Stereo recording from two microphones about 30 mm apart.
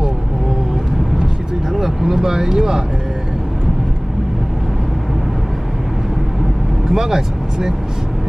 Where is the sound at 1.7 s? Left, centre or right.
Centre.